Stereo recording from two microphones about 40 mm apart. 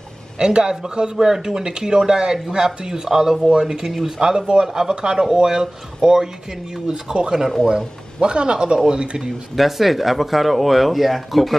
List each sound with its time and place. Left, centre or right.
0.4 s a man's voice: right
9.6 s speech: centre